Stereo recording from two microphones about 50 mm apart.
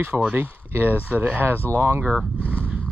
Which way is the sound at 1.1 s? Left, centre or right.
Right.